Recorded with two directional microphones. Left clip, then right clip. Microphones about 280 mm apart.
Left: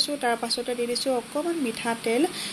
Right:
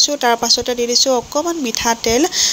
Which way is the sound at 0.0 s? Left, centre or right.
Right.